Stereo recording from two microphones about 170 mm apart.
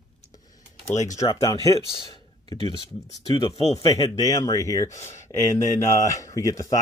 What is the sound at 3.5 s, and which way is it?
Speech, 35° left (ahead or behind).